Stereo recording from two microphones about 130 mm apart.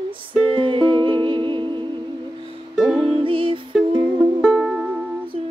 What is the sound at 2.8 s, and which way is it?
Music, centre (ahead or behind).